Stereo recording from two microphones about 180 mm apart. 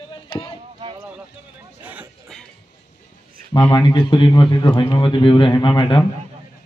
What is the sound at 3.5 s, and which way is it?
A man's voice, 25° left (ahead or behind).